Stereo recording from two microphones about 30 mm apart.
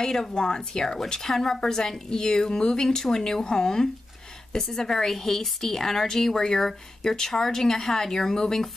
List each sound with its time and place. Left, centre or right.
0.0 s a woman's voice: centre